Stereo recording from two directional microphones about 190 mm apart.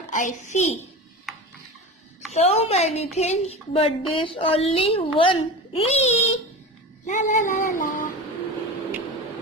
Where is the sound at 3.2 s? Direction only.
35° left (ahead or behind).